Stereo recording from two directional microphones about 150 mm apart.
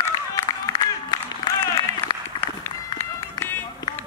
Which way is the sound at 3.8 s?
25° left (ahead or behind).